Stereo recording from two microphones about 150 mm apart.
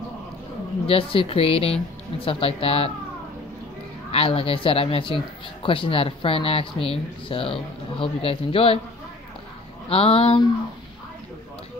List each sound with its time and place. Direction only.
0.8 s speech: 40° left (ahead or behind)
4.1 s speech: 40° left (ahead or behind)
9.8 s speech: 40° left (ahead or behind)